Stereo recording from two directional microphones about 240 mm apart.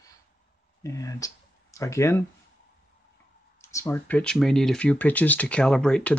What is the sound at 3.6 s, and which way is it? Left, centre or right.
Speech, centre.